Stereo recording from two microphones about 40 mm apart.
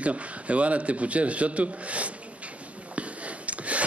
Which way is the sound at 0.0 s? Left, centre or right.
Right.